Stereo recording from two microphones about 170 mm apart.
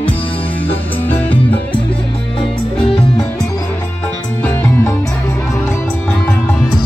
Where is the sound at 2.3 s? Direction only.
30° left (ahead or behind).